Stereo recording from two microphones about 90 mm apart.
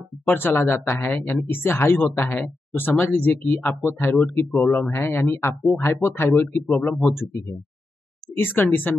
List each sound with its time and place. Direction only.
0.3 s speech: 20° left (ahead or behind)
8.5 s speech: 20° left (ahead or behind)